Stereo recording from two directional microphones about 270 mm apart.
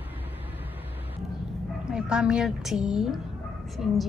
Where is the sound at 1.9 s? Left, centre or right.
Centre.